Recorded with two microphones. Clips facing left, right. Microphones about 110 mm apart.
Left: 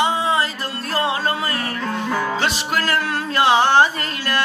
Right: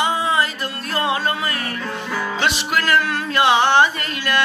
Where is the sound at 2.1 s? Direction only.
35° left (ahead or behind).